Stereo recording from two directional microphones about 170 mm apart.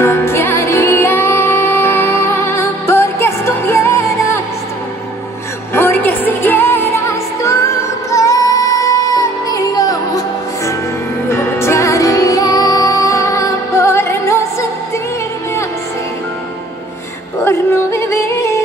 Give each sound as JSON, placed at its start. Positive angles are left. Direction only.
{"t": 0.0, "sound": "music", "side_deg": 15}
{"t": 5.8, "sound": "music", "side_deg": 10}
{"t": 17.5, "sound": "yodeling", "side_deg": 15}